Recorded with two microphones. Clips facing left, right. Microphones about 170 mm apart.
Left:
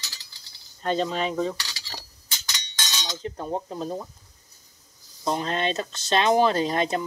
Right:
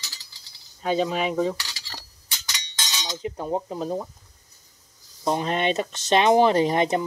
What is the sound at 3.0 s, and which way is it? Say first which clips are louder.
Speech: right 3 dB; 10° right (ahead or behind).